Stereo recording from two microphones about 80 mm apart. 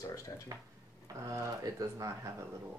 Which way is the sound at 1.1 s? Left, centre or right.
Right.